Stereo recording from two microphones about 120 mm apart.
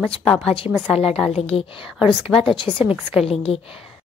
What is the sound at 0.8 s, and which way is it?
Speech, 5° right (ahead or behind).